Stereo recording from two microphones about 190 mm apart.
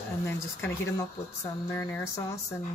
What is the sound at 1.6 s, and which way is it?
Speech, 15° left (ahead or behind).